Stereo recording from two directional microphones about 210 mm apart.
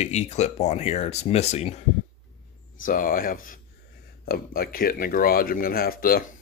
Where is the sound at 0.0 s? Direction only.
30° left (ahead or behind).